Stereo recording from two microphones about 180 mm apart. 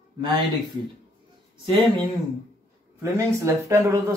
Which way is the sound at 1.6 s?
25° right (ahead or behind).